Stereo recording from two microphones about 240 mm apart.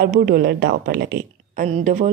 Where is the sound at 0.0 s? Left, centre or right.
Right.